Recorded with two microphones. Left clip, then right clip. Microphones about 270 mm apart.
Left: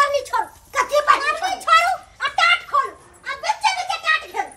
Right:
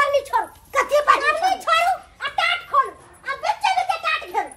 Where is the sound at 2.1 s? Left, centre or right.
Centre.